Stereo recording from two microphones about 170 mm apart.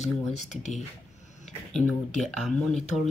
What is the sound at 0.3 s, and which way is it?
Speech, 40° left (ahead or behind).